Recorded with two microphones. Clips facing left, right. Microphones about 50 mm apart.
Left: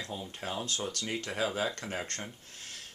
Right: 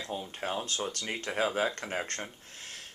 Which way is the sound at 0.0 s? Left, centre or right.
Right.